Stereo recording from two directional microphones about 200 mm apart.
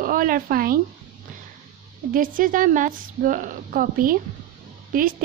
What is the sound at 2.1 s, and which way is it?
A woman's voice, 45° right (ahead or behind).